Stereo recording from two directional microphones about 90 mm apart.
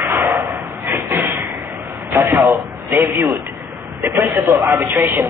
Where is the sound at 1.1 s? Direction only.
25° right (ahead or behind).